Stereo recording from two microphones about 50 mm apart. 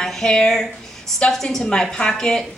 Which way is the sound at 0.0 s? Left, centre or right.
Centre.